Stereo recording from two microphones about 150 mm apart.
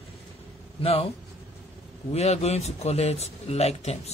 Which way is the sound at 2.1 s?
45° left (ahead or behind).